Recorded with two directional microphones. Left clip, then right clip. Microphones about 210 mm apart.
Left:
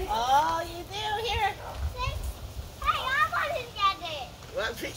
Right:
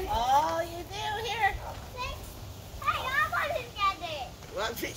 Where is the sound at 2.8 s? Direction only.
5° left (ahead or behind).